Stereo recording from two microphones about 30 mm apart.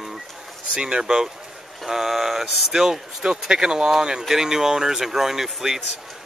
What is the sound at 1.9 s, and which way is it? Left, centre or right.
Speech, centre.